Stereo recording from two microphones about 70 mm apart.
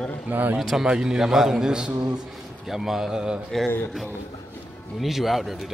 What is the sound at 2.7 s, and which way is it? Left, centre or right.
Speech, centre.